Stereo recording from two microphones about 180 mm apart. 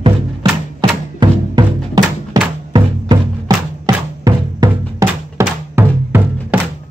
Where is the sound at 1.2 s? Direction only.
25° right (ahead or behind).